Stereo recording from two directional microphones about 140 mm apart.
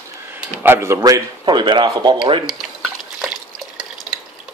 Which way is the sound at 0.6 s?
15° right (ahead or behind).